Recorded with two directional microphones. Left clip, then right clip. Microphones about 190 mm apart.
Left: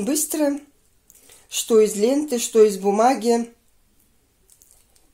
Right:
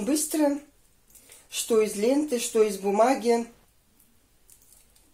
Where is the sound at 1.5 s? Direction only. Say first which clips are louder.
Left 7 dB; 50° left (ahead or behind).